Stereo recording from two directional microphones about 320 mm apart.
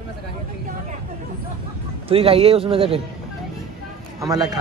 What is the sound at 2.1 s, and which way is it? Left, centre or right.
Speech, centre.